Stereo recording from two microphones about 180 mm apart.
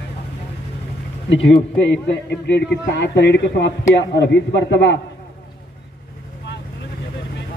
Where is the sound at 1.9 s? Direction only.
75° left (ahead or behind).